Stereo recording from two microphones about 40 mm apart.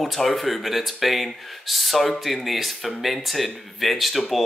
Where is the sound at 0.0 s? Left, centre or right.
Centre.